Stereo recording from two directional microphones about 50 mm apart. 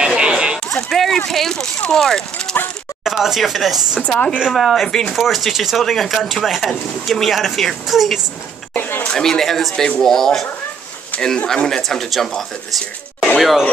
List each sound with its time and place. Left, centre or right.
0.0 s a sound: centre
0.7 s a sound: centre
1.8 s speech: centre
3.0 s speech: centre
4.1 s speech: left
4.6 s speech: centre
8.7 s speech: left
9.1 s speech: centre